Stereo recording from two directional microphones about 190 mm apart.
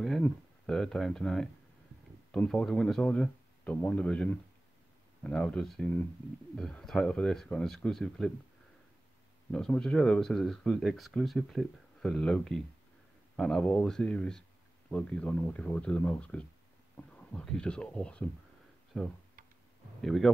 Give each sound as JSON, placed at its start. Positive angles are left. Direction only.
{"t": 0.0, "sound": "speech", "side_deg": 0}
{"t": 9.5, "sound": "speech", "side_deg": 5}